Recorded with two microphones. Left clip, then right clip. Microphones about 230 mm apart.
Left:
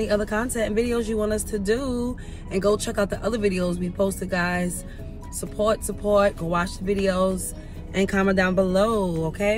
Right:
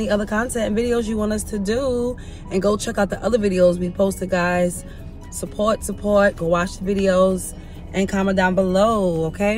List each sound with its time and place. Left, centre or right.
0.0 s speech: centre